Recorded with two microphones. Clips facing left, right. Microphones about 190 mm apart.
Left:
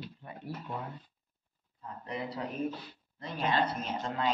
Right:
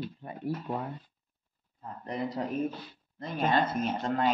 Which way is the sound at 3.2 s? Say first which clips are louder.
Right 3 dB; 50° right (ahead or behind).